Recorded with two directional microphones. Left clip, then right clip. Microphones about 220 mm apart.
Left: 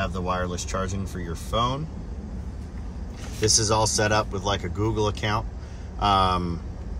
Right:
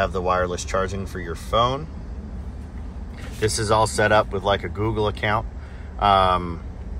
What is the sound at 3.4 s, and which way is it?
Speech, 30° left (ahead or behind).